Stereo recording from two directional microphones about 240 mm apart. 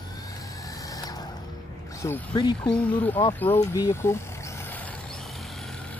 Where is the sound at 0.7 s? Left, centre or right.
Centre.